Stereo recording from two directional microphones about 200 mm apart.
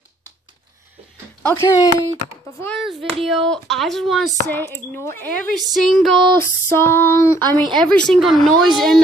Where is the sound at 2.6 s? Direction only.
Centre (ahead or behind).